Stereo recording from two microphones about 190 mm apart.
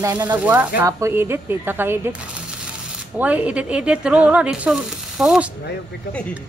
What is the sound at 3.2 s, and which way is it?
Speech, 10° right (ahead or behind).